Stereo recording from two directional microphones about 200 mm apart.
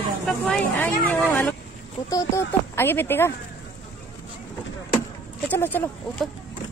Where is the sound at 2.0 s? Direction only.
15° left (ahead or behind).